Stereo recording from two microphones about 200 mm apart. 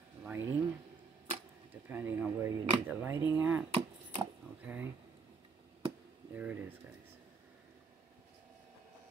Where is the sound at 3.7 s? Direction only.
30° right (ahead or behind).